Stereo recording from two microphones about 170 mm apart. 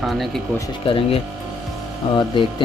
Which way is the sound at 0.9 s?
30° left (ahead or behind).